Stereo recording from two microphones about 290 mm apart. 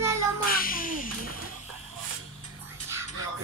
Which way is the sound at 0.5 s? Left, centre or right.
Left.